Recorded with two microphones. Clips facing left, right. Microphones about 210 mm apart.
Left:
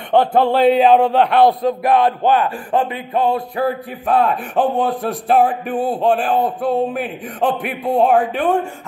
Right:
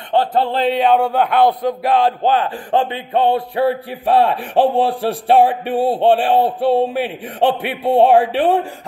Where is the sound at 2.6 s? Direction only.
30° right (ahead or behind).